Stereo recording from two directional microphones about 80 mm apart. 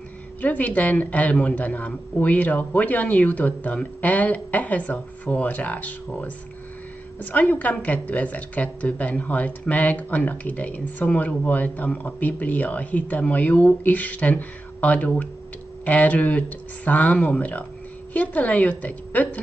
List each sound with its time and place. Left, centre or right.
0.4 s a woman's voice: left